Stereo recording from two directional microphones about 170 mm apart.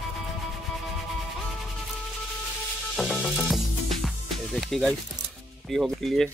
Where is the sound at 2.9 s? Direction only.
Centre (ahead or behind).